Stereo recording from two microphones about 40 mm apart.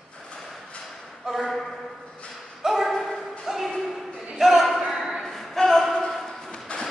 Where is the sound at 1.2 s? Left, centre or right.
Centre.